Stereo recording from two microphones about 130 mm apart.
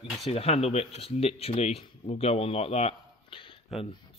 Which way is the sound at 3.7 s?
Centre (ahead or behind).